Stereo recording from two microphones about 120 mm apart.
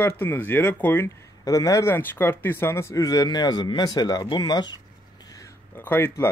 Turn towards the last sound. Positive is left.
turn(degrees=20)  # may be behind; listen again after turning